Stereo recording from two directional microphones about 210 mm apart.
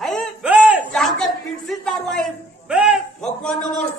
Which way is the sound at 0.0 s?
Centre (ahead or behind).